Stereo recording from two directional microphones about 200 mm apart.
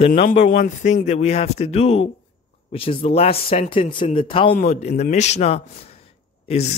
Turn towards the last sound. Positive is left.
turn(degrees=30)  # may be behind; listen again after turning